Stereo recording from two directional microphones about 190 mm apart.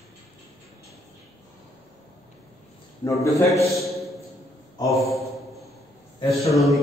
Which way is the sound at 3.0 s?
15° left (ahead or behind).